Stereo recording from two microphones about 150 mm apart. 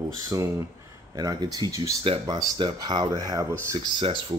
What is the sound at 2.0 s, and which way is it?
Speech, 35° right (ahead or behind).